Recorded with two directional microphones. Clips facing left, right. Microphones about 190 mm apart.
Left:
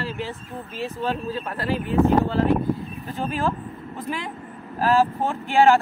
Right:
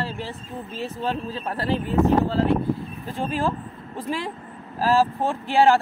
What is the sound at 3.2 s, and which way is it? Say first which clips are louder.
Speech: even; 30° right (ahead or behind).